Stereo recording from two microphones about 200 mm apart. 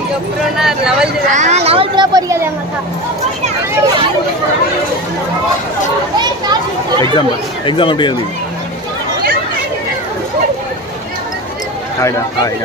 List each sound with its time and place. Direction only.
0.6 s speech: 5° right (ahead or behind)
1.3 s speech: 35° right (ahead or behind); by 2.5 s 15° right (ahead or behind)
6.5 s a sound: 25° right (ahead or behind)
7.2 s speech: 25° left (ahead or behind)
12.0 s speech: 15° left (ahead or behind)